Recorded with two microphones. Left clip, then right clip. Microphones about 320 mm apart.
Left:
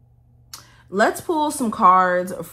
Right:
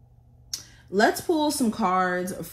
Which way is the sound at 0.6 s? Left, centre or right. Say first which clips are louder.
Left 3 dB; left.